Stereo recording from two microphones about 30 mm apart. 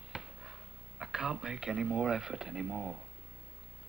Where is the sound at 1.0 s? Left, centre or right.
Centre.